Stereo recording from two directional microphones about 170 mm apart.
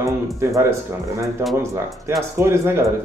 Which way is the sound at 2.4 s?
15° right (ahead or behind).